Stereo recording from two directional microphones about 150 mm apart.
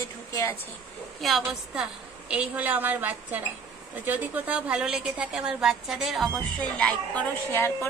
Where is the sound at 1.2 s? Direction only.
Centre (ahead or behind).